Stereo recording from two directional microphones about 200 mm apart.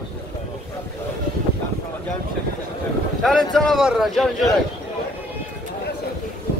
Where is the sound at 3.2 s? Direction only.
Centre (ahead or behind).